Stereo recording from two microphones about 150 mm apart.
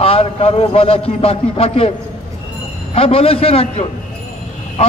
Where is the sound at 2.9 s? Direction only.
40° left (ahead or behind).